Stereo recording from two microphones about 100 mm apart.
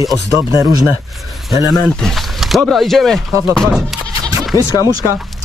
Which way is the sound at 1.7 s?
5° left (ahead or behind).